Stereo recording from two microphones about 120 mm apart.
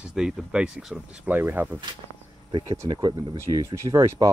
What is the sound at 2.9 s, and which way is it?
Speech, 35° right (ahead or behind).